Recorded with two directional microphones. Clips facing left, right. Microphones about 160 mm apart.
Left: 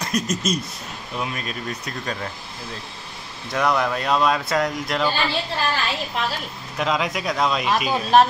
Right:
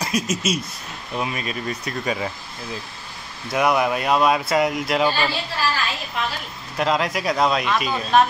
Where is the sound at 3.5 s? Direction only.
10° right (ahead or behind).